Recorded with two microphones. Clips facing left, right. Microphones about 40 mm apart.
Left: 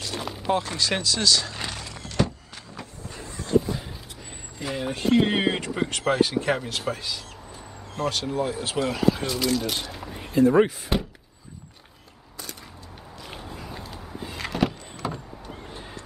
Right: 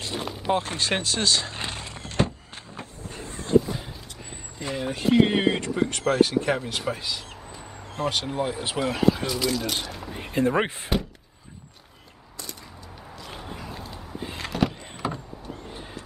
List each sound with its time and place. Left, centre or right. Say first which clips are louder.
0.1 s chopping: even; centre
0.6 s a sound: even; right
4.6 s speech: even; centre
6.9 s speech: even; centre
10.3 s speech: left 5 dB; right
13.6 s a sound: even; centre
15.0 s power windows: right 1 dB; centre